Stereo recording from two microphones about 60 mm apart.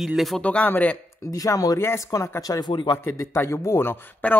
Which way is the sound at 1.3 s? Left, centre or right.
Left.